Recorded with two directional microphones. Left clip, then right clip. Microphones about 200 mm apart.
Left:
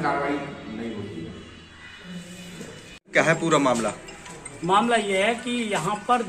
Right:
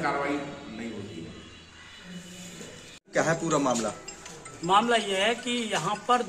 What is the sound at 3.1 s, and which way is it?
A man's voice, 25° right (ahead or behind).